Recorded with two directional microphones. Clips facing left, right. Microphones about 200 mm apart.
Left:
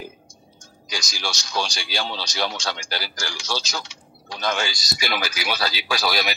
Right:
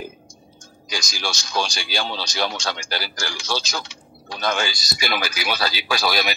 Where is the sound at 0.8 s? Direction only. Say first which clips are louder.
Right 2 dB; 50° right (ahead or behind).